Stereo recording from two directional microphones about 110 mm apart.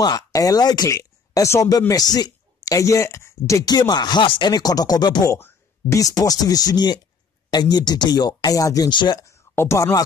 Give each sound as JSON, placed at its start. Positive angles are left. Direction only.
{"t": 0.0, "sound": "speech", "side_deg": 35}
{"t": 5.3, "sound": "speech", "side_deg": 25}
{"t": 9.2, "sound": "speech", "side_deg": 25}